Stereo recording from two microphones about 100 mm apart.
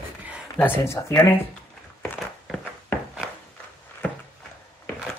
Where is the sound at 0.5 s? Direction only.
20° left (ahead or behind).